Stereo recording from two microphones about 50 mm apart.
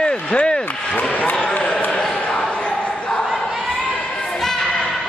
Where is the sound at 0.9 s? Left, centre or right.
Centre.